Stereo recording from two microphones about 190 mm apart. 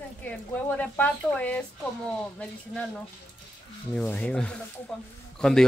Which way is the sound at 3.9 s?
10° left (ahead or behind).